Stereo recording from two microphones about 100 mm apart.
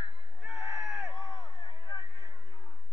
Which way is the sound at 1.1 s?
45° left (ahead or behind).